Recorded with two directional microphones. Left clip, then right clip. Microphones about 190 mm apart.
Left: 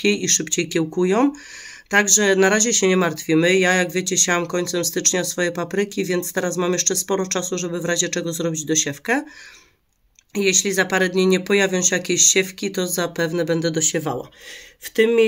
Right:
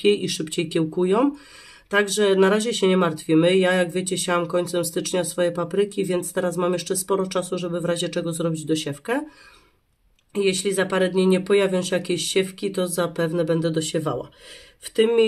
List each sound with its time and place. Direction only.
0.0 s speech: 20° left (ahead or behind)
10.3 s speech: 20° left (ahead or behind)